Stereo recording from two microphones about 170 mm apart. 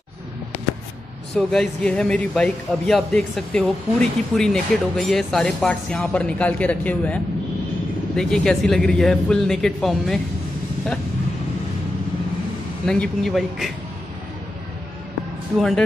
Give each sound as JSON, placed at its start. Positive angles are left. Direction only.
{"t": 1.3, "sound": "speech", "side_deg": 5}
{"t": 8.2, "sound": "speech", "side_deg": 5}
{"t": 12.8, "sound": "speech", "side_deg": 5}